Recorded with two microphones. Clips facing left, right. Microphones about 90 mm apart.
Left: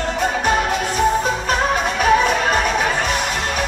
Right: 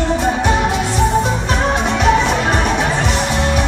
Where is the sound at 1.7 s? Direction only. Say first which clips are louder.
Right 2 dB; 20° right (ahead or behind).